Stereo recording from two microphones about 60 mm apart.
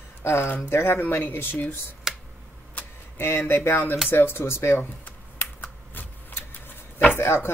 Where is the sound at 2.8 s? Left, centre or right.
Left.